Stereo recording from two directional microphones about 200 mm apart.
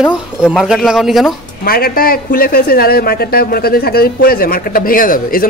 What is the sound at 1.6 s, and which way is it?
Speech, 50° left (ahead or behind).